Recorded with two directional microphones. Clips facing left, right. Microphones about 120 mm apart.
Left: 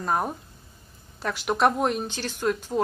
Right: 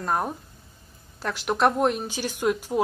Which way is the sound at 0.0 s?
Centre (ahead or behind).